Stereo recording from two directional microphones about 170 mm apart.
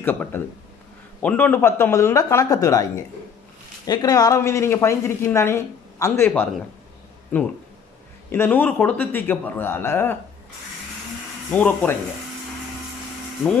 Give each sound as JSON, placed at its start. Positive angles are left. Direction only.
{"t": 0.0, "sound": "speech", "side_deg": 10}
{"t": 11.5, "sound": "speech", "side_deg": 10}